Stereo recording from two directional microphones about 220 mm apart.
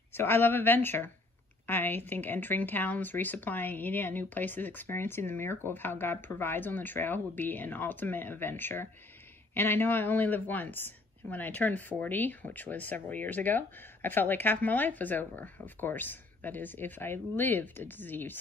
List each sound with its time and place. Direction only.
0.1 s speech: 10° left (ahead or behind)